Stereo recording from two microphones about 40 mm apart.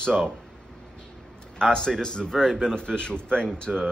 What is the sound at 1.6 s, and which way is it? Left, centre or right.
Speech, centre.